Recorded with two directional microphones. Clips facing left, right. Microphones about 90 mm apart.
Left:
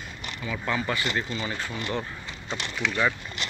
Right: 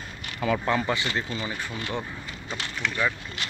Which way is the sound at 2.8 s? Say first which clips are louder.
Left 2 dB; 15° left (ahead or behind).